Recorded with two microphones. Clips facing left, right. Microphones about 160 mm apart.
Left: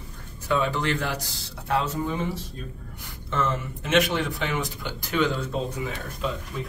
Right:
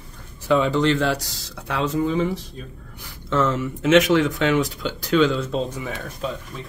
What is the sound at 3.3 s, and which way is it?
Speech, 80° right.